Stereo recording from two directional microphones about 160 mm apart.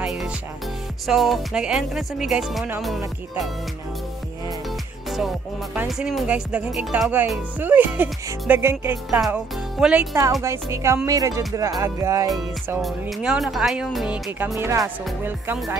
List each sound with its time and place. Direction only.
0.0 s music: 5° right (ahead or behind)
1.0 s speech: centre (ahead or behind)
5.9 s speech: centre (ahead or behind)
10.4 s speech: 15° right (ahead or behind)
11.1 s music: 20° right (ahead or behind)
12.8 s speech: 5° right (ahead or behind)
14.6 s speech: 15° right (ahead or behind)